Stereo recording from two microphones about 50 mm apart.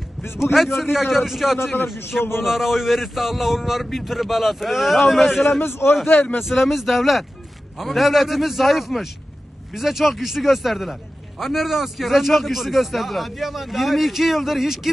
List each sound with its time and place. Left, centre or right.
0.4 s a man's voice: centre
5.6 s a man's voice: left
6.4 s a man's voice: centre